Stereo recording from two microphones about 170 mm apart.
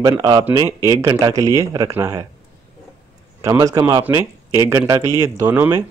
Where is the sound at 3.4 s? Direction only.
20° right (ahead or behind).